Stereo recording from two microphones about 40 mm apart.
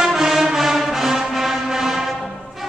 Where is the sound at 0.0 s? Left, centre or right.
Centre.